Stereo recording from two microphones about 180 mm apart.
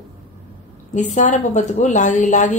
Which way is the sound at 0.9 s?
45° left (ahead or behind).